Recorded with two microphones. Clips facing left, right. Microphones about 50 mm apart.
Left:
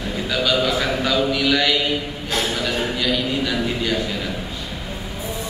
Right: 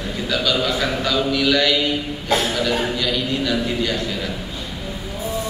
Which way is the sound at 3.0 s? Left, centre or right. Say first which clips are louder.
Even; centre.